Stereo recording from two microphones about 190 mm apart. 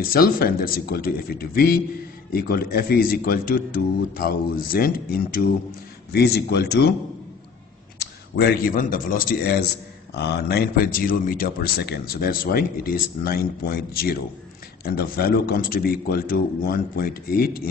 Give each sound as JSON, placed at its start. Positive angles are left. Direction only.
{"t": 0.0, "sound": "a man's voice", "side_deg": 50}
{"t": 8.0, "sound": "a man's voice", "side_deg": 55}